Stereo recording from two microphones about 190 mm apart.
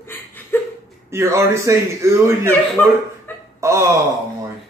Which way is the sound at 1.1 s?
15° right (ahead or behind).